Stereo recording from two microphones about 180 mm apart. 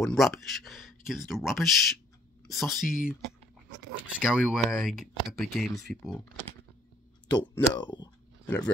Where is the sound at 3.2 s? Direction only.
75° right (ahead or behind).